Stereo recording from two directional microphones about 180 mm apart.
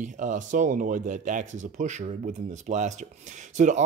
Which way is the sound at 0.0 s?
45° right (ahead or behind).